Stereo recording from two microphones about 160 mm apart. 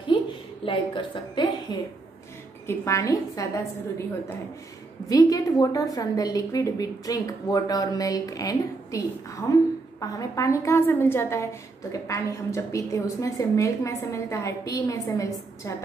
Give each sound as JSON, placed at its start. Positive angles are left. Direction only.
{"t": 0.7, "sound": "a woman's voice", "side_deg": 30}
{"t": 2.6, "sound": "a woman's voice", "side_deg": 15}
{"t": 5.0, "sound": "a woman's voice", "side_deg": 20}